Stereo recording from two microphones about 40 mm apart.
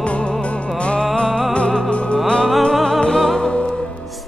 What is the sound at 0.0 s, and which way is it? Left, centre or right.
Music, left.